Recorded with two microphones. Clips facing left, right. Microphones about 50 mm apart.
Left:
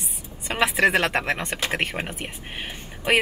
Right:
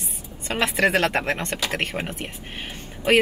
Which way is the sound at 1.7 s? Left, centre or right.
Centre.